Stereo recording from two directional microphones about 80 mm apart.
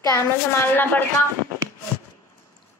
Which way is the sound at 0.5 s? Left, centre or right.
Left.